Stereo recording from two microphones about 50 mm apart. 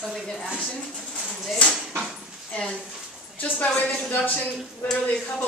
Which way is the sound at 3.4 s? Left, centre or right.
Left.